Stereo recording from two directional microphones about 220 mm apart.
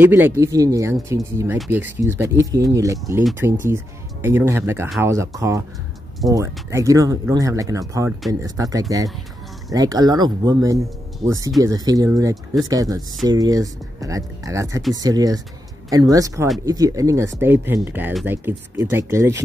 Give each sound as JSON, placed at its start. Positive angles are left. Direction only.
{"t": 0.0, "sound": "speech", "side_deg": -10}